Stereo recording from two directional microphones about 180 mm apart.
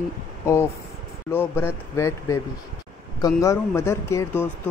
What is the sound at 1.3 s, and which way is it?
Speech, 10° left (ahead or behind).